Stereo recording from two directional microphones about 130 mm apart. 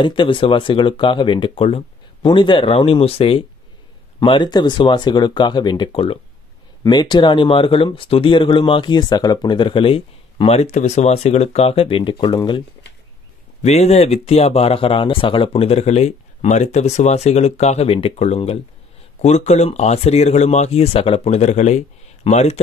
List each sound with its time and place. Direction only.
0.0 s speech: 40° left (ahead or behind)
6.8 s speech: 35° left (ahead or behind)
13.6 s speech: 55° left (ahead or behind)